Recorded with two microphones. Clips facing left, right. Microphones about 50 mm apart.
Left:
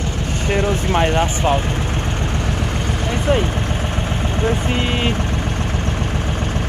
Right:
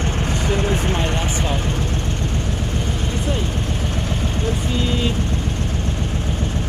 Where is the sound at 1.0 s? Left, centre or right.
Left.